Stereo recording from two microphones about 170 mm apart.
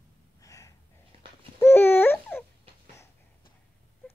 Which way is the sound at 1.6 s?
15° left (ahead or behind).